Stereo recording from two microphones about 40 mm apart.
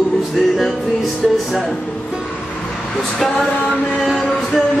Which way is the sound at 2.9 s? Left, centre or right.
Left.